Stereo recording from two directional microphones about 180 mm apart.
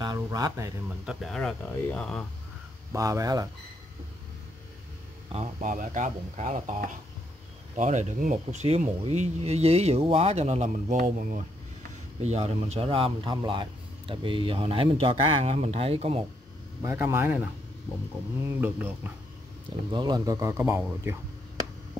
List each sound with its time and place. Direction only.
0.0 s speech: 20° right (ahead or behind)
0.8 s speech: centre (ahead or behind)
2.9 s speech: 20° right (ahead or behind)
5.3 s speech: 40° right (ahead or behind)
16.8 s speech: 15° right (ahead or behind)
18.4 s speech: 10° right (ahead or behind)
19.9 s speech: 25° right (ahead or behind)